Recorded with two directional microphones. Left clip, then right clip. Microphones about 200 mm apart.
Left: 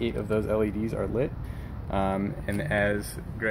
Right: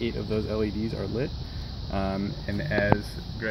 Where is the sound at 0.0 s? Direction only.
15° left (ahead or behind).